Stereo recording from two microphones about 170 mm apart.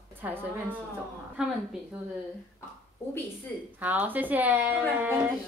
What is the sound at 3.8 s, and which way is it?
Speech, 10° right (ahead or behind).